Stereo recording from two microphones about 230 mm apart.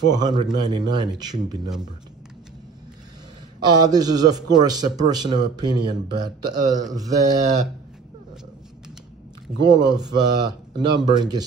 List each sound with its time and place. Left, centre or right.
0.0 s a man's voice: centre
3.7 s a man's voice: centre
9.6 s a man's voice: centre